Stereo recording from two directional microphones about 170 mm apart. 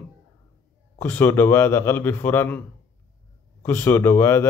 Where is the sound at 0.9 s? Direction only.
15° left (ahead or behind).